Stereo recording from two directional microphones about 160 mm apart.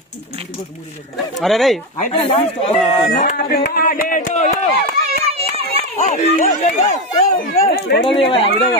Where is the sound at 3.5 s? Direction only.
70° left (ahead or behind); by 4.5 s 50° left (ahead or behind).